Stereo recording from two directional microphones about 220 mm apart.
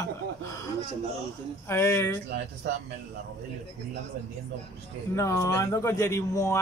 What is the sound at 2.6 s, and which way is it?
Speech, 50° right (ahead or behind).